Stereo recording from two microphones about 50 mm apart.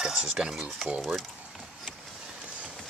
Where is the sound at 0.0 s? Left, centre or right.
Centre.